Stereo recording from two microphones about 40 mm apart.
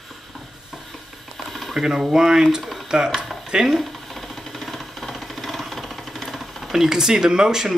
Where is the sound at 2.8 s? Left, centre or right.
Centre.